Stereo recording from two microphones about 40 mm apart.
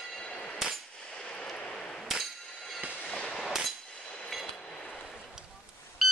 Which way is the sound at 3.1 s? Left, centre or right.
Left.